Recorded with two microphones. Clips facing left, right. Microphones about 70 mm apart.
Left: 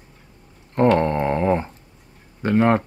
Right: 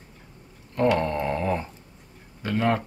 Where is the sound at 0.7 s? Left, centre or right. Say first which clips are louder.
Left 5 dB; left.